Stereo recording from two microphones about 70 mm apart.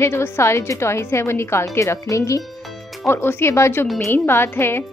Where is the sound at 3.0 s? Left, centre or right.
Left.